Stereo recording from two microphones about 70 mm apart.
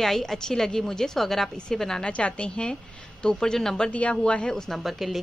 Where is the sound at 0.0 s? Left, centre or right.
Centre.